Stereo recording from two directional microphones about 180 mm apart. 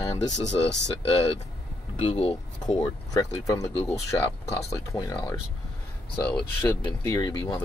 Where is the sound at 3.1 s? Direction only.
20° left (ahead or behind).